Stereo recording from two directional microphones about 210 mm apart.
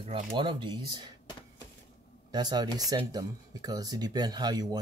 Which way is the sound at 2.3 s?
20° right (ahead or behind).